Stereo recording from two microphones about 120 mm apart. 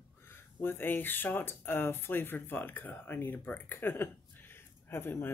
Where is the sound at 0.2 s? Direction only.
20° left (ahead or behind).